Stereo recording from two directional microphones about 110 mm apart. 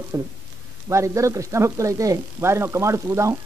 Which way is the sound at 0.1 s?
30° right (ahead or behind).